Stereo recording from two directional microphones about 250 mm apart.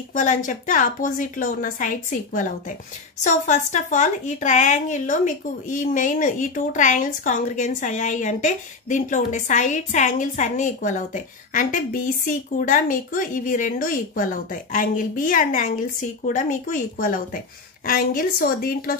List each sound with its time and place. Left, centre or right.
0.1 s speech: left